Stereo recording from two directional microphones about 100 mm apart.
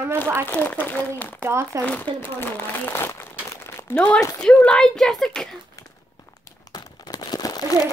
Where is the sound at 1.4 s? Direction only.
25° right (ahead or behind).